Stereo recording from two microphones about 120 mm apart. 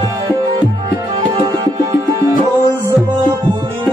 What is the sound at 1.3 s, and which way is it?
Tabla, 40° right (ahead or behind).